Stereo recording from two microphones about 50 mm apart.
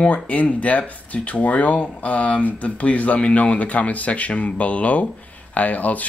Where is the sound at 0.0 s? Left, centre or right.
Left.